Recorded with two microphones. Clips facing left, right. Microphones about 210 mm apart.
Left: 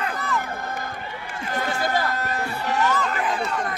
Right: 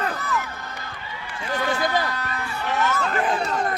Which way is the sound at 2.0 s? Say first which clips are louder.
Left 3 dB; 45° left (ahead or behind).